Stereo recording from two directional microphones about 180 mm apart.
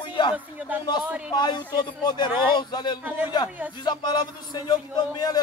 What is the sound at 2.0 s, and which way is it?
A man's voice, 25° left (ahead or behind).